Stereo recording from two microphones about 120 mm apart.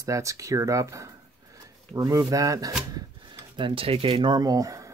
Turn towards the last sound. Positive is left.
turn(degrees=-30)  # may be behind; listen again after turning